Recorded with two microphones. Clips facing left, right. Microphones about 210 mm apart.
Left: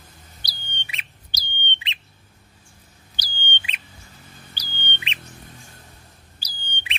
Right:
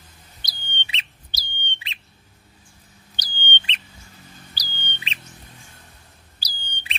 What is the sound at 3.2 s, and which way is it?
Bird, 10° left (ahead or behind).